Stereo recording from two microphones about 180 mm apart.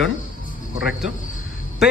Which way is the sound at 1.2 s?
45° left (ahead or behind).